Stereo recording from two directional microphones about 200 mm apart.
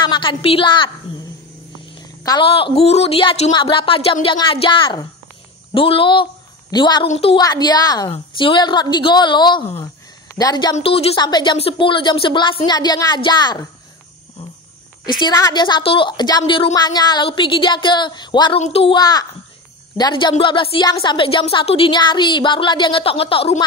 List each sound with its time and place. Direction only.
0.0 s a woman's voice: 25° left (ahead or behind)
2.0 s a woman's voice: 20° left (ahead or behind)
15.1 s a woman's voice: 20° left (ahead or behind)